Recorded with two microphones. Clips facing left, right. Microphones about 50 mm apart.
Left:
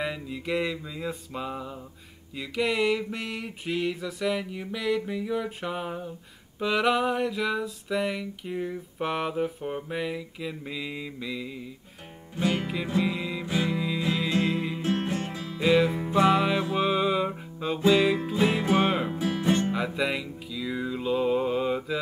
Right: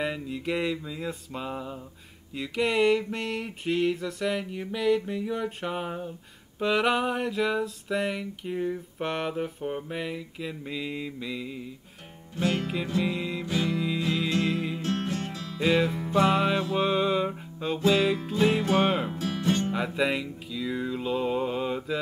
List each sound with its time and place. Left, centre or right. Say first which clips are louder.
0.0 s a sound: right 1 dB; centre
12.4 s music: even; centre
13.0 s music: even; centre
13.5 s music: left 1 dB; centre
13.7 s music: right 1 dB; centre
14.3 s music: left 1 dB; centre
15.6 s a sound: left 2 dB; centre
16.0 s music: left 1 dB; centre
16.3 s a sound: left 1 dB; centre
16.7 s music: left 1 dB; centre
19.1 s music: left 2 dB; centre
19.7 s music: right 1 dB; centre